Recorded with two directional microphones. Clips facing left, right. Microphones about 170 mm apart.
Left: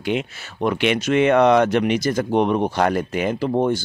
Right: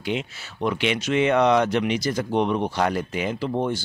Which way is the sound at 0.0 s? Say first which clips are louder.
Left 4 dB; 55° left (ahead or behind).